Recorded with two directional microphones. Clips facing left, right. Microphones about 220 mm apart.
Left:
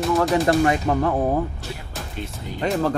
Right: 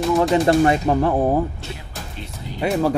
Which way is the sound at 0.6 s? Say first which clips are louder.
Right 3 dB; 30° right (ahead or behind).